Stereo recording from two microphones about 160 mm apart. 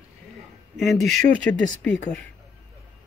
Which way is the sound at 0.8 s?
Centre (ahead or behind).